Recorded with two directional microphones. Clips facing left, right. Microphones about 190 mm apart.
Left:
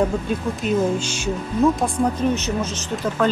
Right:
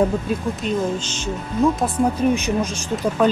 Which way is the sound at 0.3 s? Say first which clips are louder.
Left 1 dB; 10° left (ahead or behind).